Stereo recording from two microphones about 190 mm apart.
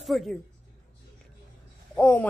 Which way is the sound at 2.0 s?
10° left (ahead or behind).